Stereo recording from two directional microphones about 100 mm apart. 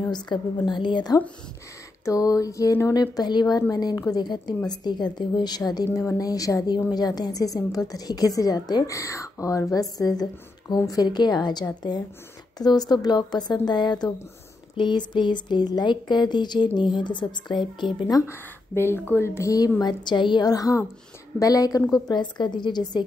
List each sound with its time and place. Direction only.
0.3 s a woman's voice: 55° left (ahead or behind)
2.0 s a woman's voice: 35° left (ahead or behind); by 18.1 s 55° left (ahead or behind)
18.1 s speech: 25° left (ahead or behind)
19.8 s a woman's voice: 45° left (ahead or behind)